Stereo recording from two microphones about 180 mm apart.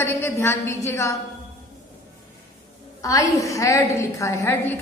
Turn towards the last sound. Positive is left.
turn(degrees=15)  # may be behind; listen again after turning